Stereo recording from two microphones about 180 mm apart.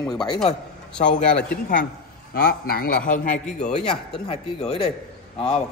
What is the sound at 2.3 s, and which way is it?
A man's voice, 60° left (ahead or behind).